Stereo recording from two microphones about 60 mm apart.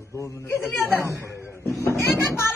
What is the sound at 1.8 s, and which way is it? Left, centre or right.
Speech, left.